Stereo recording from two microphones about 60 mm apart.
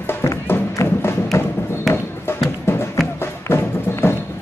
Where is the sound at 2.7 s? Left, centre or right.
Left.